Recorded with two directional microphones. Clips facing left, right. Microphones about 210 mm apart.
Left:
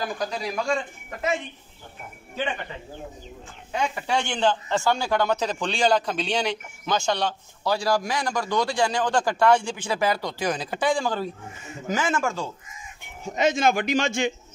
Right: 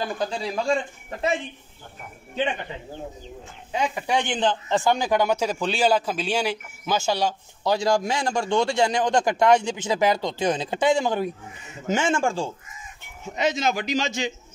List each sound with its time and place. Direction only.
0.0 s speech: 30° right (ahead or behind)
3.7 s a man's voice: 15° right (ahead or behind)
7.7 s speech: 20° right (ahead or behind)
13.2 s speech: 50° left (ahead or behind)